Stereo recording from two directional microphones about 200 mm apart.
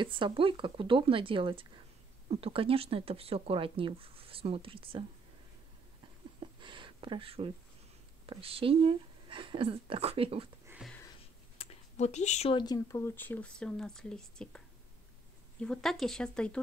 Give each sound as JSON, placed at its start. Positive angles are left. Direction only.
{"t": 0.0, "sound": "speech", "side_deg": -25}
{"t": 6.6, "sound": "a sound", "side_deg": -25}
{"t": 8.3, "sound": "speech", "side_deg": -30}
{"t": 11.5, "sound": "a sound", "side_deg": 30}
{"t": 12.5, "sound": "speech", "side_deg": 20}
{"t": 15.6, "sound": "speech", "side_deg": 5}